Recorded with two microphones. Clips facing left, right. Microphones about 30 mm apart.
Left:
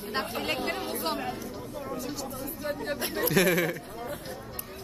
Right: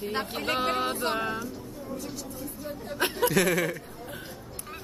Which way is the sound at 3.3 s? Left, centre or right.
Centre.